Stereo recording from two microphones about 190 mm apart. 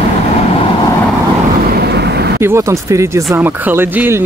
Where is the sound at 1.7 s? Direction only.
60° right (ahead or behind).